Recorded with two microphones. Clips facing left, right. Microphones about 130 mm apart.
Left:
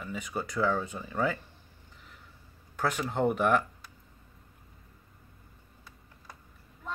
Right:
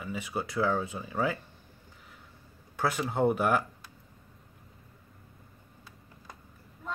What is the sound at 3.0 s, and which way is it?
Speech, 5° right (ahead or behind).